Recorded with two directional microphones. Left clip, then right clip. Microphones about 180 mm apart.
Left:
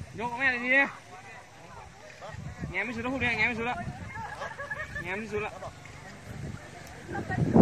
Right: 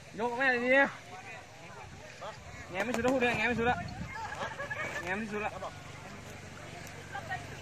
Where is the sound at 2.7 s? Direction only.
45° right (ahead or behind).